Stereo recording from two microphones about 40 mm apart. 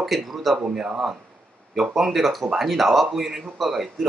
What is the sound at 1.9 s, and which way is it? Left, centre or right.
Speech, centre.